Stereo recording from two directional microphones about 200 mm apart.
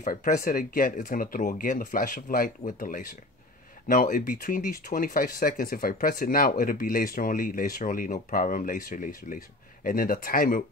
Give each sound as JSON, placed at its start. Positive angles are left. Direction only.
{"t": 0.0, "sound": "speech", "side_deg": 40}